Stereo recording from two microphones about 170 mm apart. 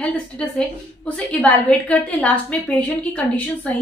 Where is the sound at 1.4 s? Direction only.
10° left (ahead or behind).